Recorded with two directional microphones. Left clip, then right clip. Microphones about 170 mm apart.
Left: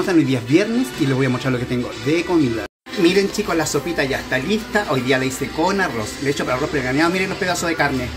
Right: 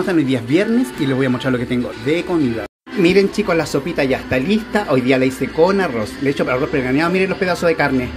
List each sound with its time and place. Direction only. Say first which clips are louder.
0.0 s speech: even; 5° left (ahead or behind)
3.0 s speech: right 3 dB; 15° right (ahead or behind)